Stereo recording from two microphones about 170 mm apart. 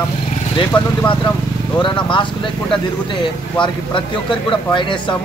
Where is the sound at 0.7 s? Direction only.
30° left (ahead or behind).